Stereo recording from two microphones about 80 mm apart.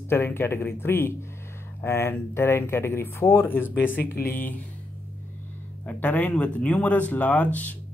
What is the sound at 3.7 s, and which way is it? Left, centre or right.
Speech, left.